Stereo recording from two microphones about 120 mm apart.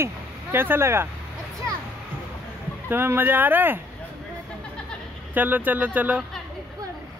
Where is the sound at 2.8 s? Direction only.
20° right (ahead or behind).